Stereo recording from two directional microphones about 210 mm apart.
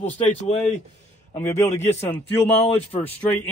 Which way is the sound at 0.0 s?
30° left (ahead or behind).